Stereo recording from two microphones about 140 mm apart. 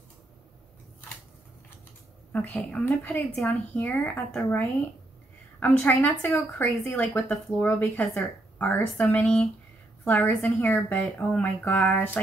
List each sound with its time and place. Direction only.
2.3 s speech: 10° left (ahead or behind)